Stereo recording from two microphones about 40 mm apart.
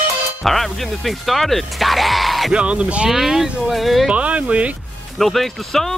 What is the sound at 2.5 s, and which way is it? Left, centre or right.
Speech, right.